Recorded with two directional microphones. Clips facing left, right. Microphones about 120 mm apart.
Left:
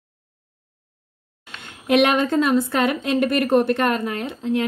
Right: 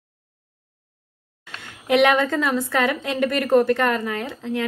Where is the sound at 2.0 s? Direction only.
20° left (ahead or behind).